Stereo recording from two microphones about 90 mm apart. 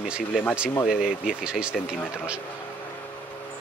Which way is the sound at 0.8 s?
10° right (ahead or behind).